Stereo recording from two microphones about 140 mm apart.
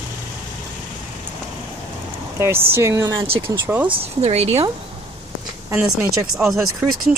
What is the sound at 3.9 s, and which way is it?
Speech, 45° right (ahead or behind).